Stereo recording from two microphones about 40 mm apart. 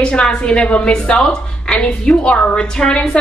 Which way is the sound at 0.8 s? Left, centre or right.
Centre.